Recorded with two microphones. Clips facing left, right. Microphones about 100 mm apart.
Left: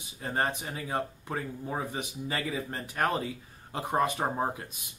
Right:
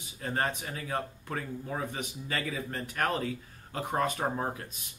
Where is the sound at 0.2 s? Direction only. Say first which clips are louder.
Left 1 dB; 20° left (ahead or behind).